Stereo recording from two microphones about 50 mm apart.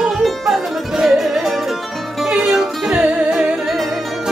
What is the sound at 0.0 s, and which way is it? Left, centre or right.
Music, centre.